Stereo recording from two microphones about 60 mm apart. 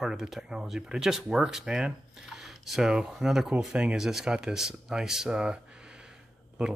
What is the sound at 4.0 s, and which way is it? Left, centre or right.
Speech, centre.